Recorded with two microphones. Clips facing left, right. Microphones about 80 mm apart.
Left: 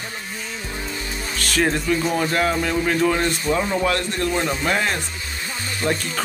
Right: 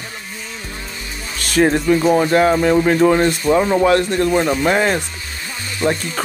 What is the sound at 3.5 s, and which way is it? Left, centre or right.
Speech, right.